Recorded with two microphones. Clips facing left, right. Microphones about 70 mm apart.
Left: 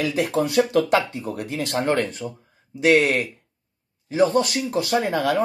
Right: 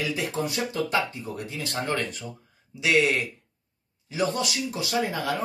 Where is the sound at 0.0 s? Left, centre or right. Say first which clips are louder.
Left 6 dB; left.